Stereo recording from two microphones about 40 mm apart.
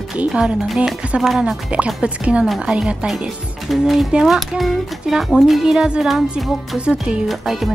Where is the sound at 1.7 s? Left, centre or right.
Right.